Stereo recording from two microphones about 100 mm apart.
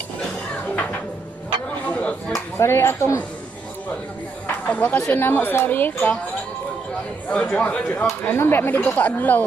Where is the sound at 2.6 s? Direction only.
25° left (ahead or behind).